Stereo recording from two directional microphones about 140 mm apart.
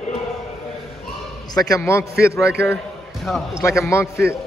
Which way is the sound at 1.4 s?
25° left (ahead or behind).